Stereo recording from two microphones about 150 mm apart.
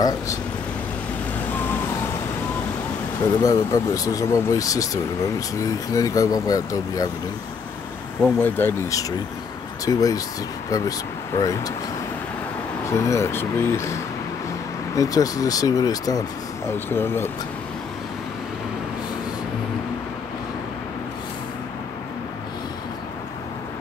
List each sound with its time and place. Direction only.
3.3 s speech: 20° left (ahead or behind)
8.2 s speech: 15° left (ahead or behind)
9.8 s speech: 25° left (ahead or behind)
12.8 s speech: 20° left (ahead or behind)
15.0 s speech: 25° left (ahead or behind)